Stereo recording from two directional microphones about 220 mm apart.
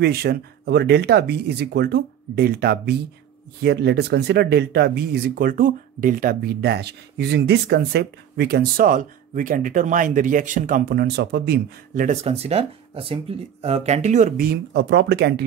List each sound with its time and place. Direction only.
0.0 s speech: 45° right (ahead or behind)